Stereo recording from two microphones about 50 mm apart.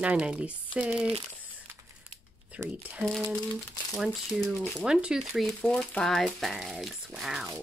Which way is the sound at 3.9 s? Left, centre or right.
Centre.